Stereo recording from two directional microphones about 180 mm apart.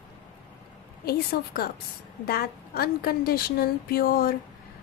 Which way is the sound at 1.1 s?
55° left (ahead or behind).